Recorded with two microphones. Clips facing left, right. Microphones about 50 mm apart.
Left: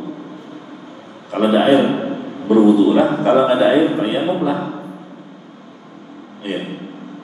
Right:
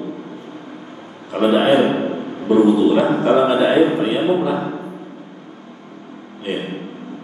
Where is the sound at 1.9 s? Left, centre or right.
Right.